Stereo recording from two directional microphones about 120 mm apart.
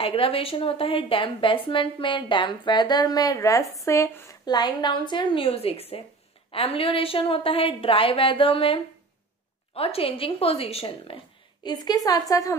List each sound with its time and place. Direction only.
0.0 s a woman's voice: 50° left (ahead or behind); by 4.4 s 20° left (ahead or behind)
4.5 s a woman's voice: 35° left (ahead or behind); by 11.1 s 55° left (ahead or behind)
11.6 s a woman's voice: 35° left (ahead or behind)